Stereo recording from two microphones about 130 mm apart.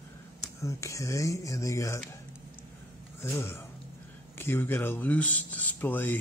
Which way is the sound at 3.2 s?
20° left (ahead or behind).